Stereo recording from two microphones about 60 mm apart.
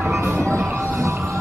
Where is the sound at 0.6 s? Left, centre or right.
Right.